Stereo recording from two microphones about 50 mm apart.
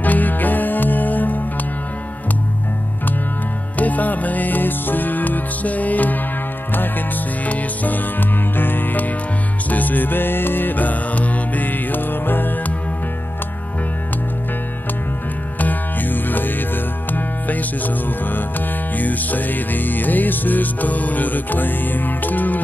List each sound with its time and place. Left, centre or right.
0.0 s music: left
3.7 s music: left
7.4 s music: left
15.6 s music: left